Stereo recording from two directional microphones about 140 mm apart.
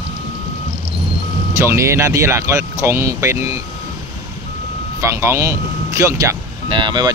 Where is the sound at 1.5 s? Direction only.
20° right (ahead or behind).